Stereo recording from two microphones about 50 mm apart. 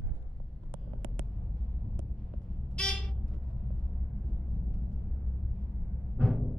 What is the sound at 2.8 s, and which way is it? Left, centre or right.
Vehicle, centre.